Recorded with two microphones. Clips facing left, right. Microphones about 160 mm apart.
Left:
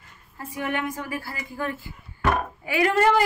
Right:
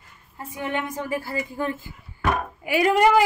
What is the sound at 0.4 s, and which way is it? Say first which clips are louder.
A woman's voice: even; 20° right (ahead or behind).